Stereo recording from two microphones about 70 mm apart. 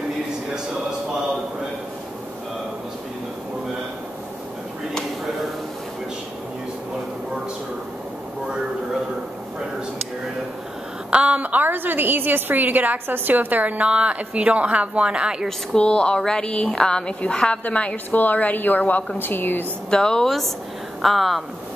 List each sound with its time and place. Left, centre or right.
11.1 s a woman's voice: centre
15.4 s a woman's voice: centre; by 19.6 s left
19.9 s a woman's voice: centre